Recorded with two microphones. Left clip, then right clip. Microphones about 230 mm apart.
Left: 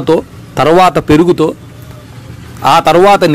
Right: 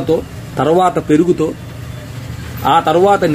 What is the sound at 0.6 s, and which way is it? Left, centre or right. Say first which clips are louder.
Speech: left 5 dB; left.